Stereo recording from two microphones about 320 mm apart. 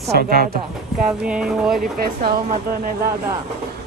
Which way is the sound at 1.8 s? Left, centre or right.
Right.